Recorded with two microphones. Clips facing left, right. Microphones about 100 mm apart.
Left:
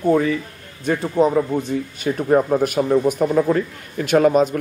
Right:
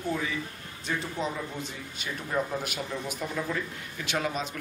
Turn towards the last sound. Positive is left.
turn(degrees=50)  # may be behind; listen again after turning